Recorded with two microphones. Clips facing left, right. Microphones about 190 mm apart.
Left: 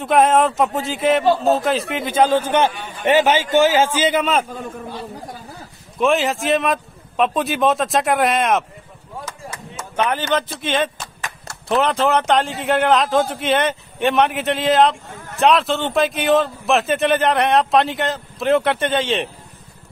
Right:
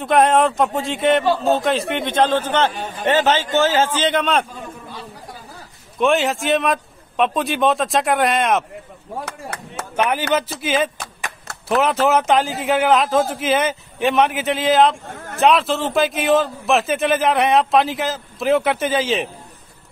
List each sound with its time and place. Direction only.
0.0 s a man's voice: centre (ahead or behind)
5.9 s a man's voice: centre (ahead or behind)
9.2 s chop: 60° right (ahead or behind)
9.9 s a man's voice: 10° right (ahead or behind)